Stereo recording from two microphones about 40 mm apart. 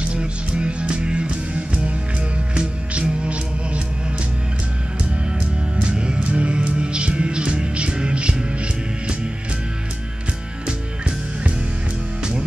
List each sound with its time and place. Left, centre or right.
0.1 s music: right
5.8 s music: right
12.2 s music: right